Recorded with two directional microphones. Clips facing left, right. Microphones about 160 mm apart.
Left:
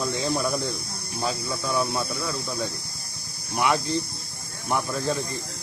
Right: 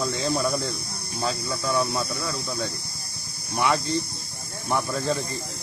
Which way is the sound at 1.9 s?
20° left (ahead or behind).